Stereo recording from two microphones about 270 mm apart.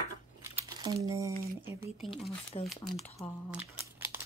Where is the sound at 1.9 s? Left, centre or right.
Centre.